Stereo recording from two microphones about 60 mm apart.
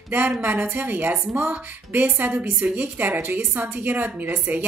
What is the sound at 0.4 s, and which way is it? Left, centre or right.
A woman's voice, right.